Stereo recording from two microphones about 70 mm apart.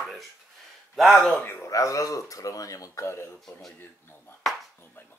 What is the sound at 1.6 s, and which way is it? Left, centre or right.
Speech, left.